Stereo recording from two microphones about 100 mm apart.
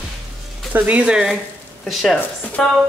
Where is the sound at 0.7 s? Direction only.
15° right (ahead or behind).